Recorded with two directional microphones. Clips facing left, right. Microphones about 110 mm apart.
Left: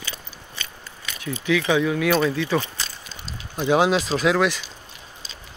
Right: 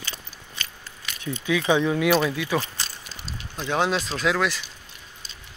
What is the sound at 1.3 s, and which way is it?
Speech, 20° right (ahead or behind).